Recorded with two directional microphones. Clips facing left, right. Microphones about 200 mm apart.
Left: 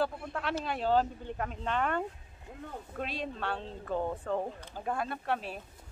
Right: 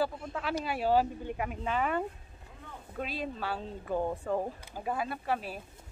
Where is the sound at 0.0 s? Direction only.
Centre (ahead or behind).